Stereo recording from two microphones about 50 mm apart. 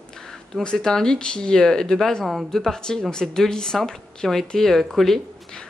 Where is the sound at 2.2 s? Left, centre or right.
Centre.